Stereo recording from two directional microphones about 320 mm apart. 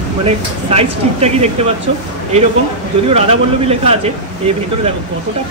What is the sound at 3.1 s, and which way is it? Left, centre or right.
Speech, centre.